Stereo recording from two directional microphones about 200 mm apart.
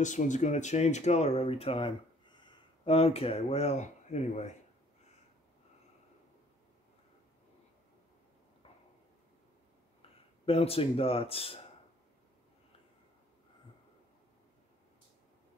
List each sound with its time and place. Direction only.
0.0 s speech: 40° left (ahead or behind)
10.4 s speech: 30° left (ahead or behind)